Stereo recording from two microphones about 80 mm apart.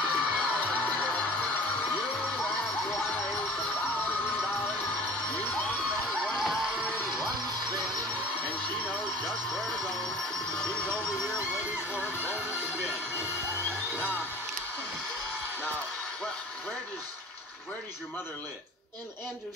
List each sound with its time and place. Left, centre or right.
0.0 s music: centre
0.7 s music: centre
5.3 s cheering: centre
6.0 s music: centre
7.4 s music: right
10.6 s music: centre
11.9 s music: centre